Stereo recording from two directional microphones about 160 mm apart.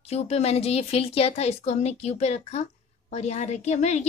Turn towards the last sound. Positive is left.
turn(degrees=45)  # may be behind; listen again after turning